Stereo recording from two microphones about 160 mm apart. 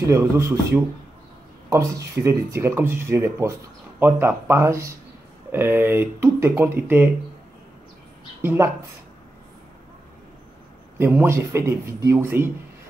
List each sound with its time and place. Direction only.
0.0 s speech: 20° right (ahead or behind)
8.4 s speech: 15° right (ahead or behind)
11.0 s speech: 10° right (ahead or behind)